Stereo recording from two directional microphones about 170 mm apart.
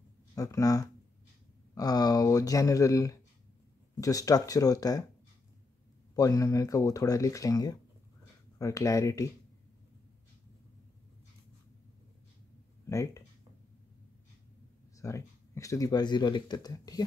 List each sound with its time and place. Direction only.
0.4 s speech: 20° left (ahead or behind)
6.1 s speech: 20° left (ahead or behind)
12.9 s speech: 20° left (ahead or behind)
15.0 s speech: 20° left (ahead or behind)